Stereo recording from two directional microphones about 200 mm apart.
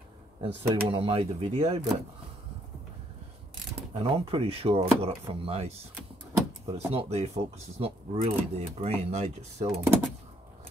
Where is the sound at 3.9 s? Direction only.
30° right (ahead or behind).